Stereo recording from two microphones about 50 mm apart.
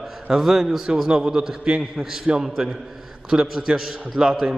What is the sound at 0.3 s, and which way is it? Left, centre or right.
A man's voice, centre.